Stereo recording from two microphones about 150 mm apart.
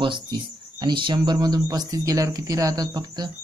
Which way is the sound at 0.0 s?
30° right (ahead or behind).